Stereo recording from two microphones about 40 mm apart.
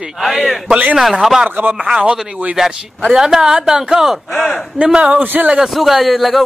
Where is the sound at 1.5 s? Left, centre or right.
Right.